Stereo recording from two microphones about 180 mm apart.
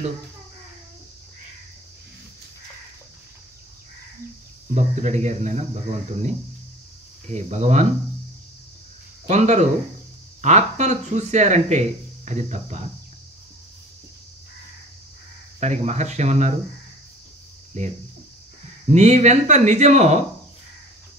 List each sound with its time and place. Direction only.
4.9 s speech: 40° right (ahead or behind)
7.3 s speech: 40° right (ahead or behind)
9.3 s speech: 40° right (ahead or behind)
15.6 s speech: 40° right (ahead or behind)
17.8 s speech: 40° right (ahead or behind)